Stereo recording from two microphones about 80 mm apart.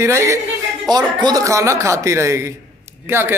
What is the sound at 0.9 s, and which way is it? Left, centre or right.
Speech, right.